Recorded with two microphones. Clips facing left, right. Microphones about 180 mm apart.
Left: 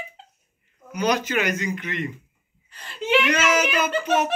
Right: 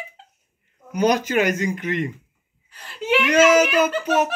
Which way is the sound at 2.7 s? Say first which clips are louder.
Right 1 dB; 10° right (ahead or behind).